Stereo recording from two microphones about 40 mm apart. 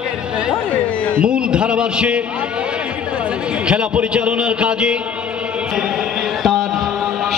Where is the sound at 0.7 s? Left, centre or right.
Left.